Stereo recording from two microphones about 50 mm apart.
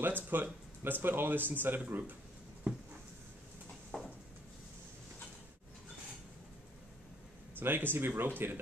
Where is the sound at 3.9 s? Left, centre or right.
Left.